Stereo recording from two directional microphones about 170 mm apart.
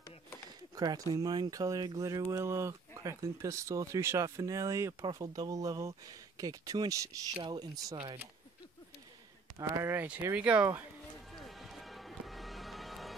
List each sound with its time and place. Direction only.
0.7 s speech: 20° right (ahead or behind)
9.6 s speech: 15° right (ahead or behind)
11.3 s music: centre (ahead or behind)